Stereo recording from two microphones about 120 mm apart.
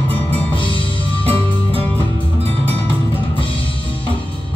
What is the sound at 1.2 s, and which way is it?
Music, 55° right (ahead or behind).